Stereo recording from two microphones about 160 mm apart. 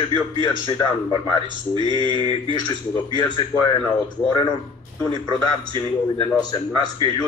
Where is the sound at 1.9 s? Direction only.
30° left (ahead or behind).